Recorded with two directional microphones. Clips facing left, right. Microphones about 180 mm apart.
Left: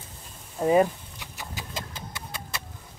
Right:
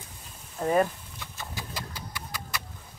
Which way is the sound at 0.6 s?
15° left (ahead or behind).